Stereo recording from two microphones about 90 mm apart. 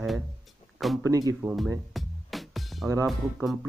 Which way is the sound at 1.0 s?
40° right (ahead or behind).